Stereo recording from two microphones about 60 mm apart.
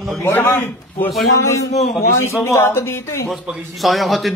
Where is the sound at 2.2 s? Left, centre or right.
Left.